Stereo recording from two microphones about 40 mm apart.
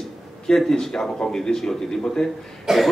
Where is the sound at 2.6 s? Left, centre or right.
Centre.